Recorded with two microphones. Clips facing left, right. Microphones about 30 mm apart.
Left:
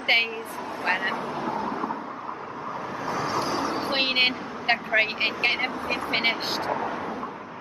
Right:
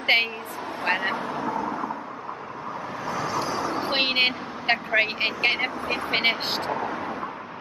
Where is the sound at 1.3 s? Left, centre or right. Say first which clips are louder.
Right 1 dB; left.